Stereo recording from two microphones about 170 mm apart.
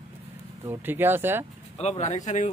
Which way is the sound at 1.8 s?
40° left (ahead or behind).